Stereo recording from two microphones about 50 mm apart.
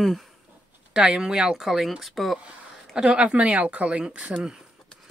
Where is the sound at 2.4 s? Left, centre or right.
Centre.